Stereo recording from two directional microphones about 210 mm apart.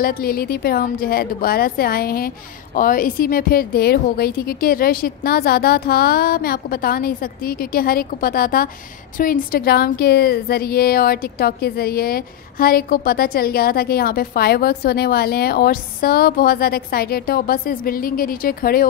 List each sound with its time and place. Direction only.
0.0 s a woman's voice: 45° left (ahead or behind)